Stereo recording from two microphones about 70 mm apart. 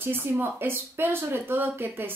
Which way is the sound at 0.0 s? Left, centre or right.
Right.